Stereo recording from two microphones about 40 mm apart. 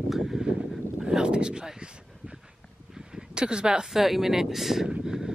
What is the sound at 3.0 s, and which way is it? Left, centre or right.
Speech, centre.